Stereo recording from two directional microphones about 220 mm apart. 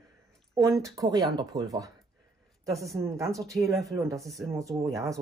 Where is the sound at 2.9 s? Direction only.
15° right (ahead or behind).